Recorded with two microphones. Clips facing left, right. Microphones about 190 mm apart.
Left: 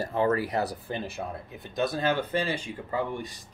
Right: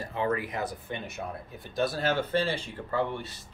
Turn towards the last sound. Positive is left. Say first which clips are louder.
# even
turn(degrees=15)  # may be behind; listen again after turning